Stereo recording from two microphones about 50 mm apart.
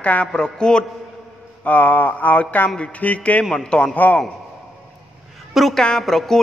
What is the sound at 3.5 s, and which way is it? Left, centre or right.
Speech, centre.